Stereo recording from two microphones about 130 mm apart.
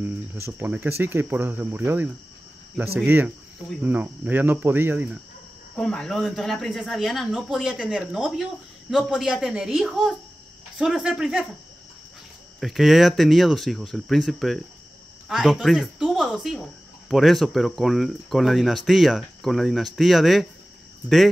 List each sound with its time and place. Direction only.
0.0 s speech: 15° right (ahead or behind)
3.8 s speech: 15° right (ahead or behind)
5.8 s speech: 5° left (ahead or behind)
12.5 s speech: centre (ahead or behind)